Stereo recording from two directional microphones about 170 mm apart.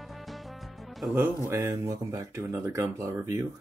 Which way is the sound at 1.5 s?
15° right (ahead or behind).